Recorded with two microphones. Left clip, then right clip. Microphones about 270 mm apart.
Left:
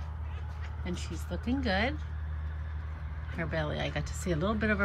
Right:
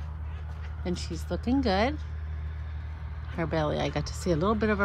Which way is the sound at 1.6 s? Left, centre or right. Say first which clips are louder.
Right 4 dB; centre.